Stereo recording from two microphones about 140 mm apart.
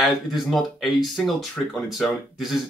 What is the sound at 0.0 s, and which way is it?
Speech, centre (ahead or behind).